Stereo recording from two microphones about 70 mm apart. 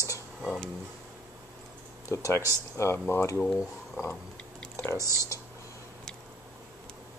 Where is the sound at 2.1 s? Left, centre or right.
Left.